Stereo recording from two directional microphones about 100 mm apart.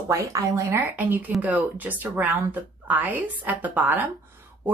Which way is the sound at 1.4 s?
15° right (ahead or behind).